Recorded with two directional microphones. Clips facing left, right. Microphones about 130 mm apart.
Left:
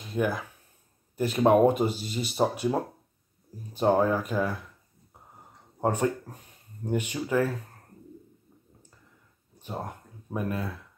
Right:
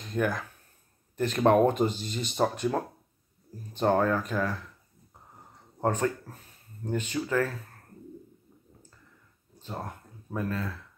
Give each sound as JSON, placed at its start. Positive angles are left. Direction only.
{"t": 0.0, "sound": "speech", "side_deg": 5}
{"t": 5.8, "sound": "speech", "side_deg": 15}
{"t": 9.6, "sound": "speech", "side_deg": 15}